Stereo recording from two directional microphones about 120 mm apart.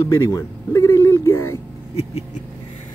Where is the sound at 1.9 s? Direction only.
60° left (ahead or behind).